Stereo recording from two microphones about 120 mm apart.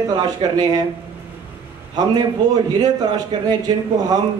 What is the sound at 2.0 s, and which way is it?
A man's voice, 35° right (ahead or behind).